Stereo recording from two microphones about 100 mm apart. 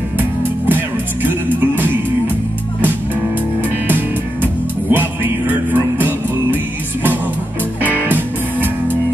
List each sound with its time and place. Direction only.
0.7 s music: 20° right (ahead or behind)
3.8 s music: 20° right (ahead or behind)
5.5 s music: 20° right (ahead or behind)